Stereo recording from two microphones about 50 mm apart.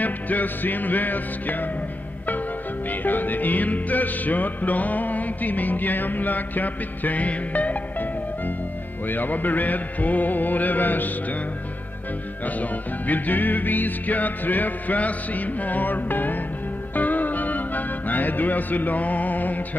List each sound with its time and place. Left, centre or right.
0.0 s music: left
2.9 s music: left
12.4 s music: left